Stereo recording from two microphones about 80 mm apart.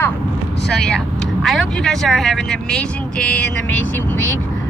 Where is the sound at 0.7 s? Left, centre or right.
Centre.